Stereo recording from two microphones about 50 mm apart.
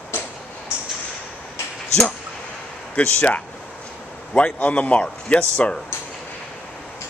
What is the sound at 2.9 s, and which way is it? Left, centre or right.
A man's voice, left.